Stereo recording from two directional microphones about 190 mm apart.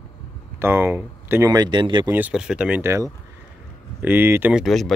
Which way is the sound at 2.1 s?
5° right (ahead or behind).